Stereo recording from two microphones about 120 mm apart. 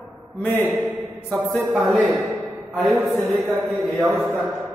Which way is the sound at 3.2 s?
20° right (ahead or behind).